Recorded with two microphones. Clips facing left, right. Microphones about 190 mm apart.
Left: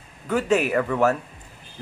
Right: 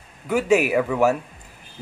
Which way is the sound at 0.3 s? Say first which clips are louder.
Right 2 dB; 10° right (ahead or behind).